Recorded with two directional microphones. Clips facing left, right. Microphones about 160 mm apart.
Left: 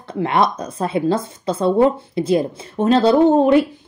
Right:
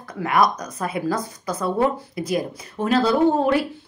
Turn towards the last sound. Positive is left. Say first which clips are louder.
# left 6 dB
turn(degrees=20)  # may be behind; listen again after turning